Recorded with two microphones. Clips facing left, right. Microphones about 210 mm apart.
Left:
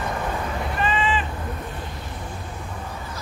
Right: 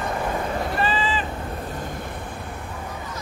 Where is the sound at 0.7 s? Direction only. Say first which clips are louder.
Left 3 dB; 35° right (ahead or behind).